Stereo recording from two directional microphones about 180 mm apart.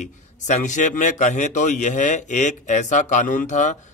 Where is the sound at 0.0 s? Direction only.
40° left (ahead or behind).